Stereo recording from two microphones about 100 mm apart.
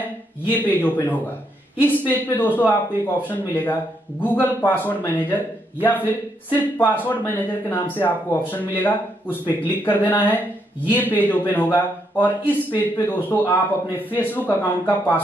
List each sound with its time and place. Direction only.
0.5 s speech: 20° left (ahead or behind)